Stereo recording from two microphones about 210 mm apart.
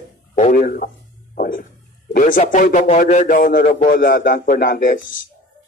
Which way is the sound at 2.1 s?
40° left (ahead or behind).